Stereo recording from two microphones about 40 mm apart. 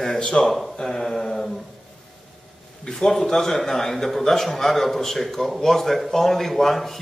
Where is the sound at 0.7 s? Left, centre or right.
Left.